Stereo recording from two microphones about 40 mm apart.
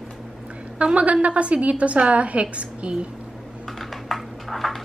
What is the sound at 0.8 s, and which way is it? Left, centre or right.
A woman's voice, right.